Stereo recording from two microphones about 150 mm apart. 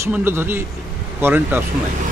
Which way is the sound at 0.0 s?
15° right (ahead or behind).